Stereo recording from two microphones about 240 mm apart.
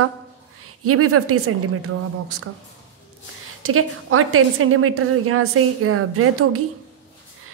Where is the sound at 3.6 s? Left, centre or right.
Right.